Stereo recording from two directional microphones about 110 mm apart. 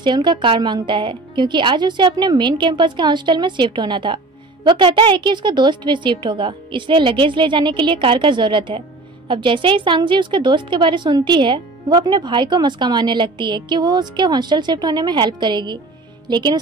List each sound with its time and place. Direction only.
0.0 s a woman's voice: 45° right (ahead or behind)